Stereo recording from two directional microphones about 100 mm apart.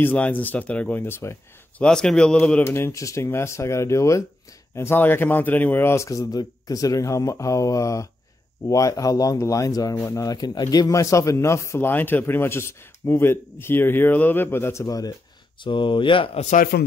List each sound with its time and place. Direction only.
0.0 s speech: 15° left (ahead or behind)
1.8 s speech: 5° left (ahead or behind)
2.6 s a man's voice: 25° left (ahead or behind)
15.6 s speech: 55° left (ahead or behind)